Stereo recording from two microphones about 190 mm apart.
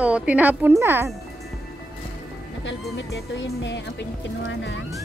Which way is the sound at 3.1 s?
65° left (ahead or behind).